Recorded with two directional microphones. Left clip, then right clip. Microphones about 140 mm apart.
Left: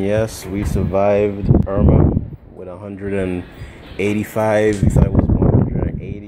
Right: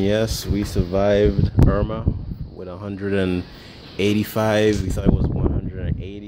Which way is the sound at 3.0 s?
45° right (ahead or behind).